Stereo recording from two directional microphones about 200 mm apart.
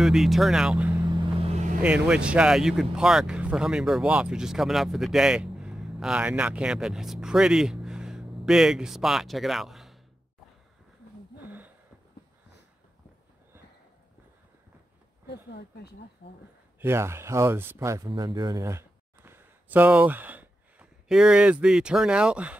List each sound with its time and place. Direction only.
0.0 s speech: centre (ahead or behind)
0.9 s vehicle: 20° right (ahead or behind)
1.8 s speech: 5° right (ahead or behind)
11.3 s a sound: 10° right (ahead or behind)
15.2 s speech: 55° left (ahead or behind)
16.8 s speech: 15° right (ahead or behind)